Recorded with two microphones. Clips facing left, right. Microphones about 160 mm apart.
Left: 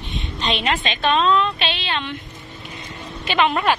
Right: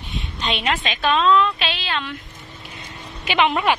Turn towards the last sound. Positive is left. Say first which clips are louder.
# even
turn(degrees=-15)  # may be behind; listen again after turning